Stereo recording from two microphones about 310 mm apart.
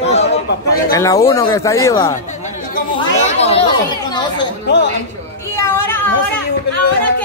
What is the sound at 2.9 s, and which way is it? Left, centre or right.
Chatter, centre.